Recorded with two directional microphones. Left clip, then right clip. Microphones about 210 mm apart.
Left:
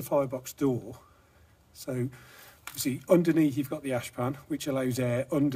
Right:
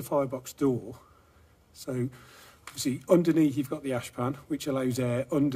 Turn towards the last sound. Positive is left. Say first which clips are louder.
# even
turn(degrees=0)  # may be behind; listen again after turning